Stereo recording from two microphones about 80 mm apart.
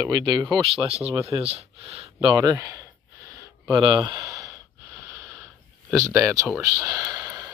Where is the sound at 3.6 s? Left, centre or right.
Right.